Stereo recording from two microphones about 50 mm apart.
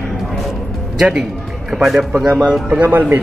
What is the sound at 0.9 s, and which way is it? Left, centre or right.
A man's voice, centre.